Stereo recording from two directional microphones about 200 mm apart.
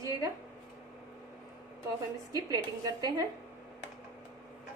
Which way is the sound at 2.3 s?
20° right (ahead or behind).